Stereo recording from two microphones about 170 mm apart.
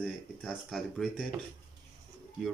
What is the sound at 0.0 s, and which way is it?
Speech, 5° right (ahead or behind).